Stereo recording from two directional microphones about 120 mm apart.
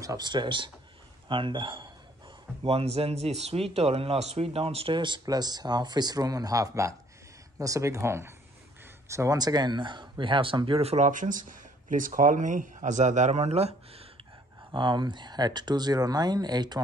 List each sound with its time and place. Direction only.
0.0 s a man's voice: 30° right (ahead or behind)
2.6 s a man's voice: 55° right (ahead or behind)
14.7 s speech: 40° right (ahead or behind)